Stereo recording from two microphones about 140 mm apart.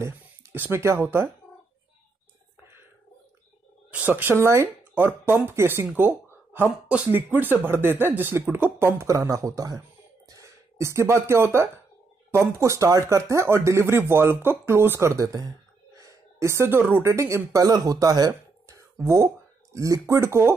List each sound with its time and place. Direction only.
0.0 s speech: 15° right (ahead or behind)
3.9 s speech: 15° right (ahead or behind)